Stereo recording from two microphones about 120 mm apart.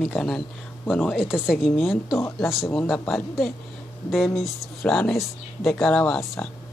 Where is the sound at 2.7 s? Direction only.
10° left (ahead or behind).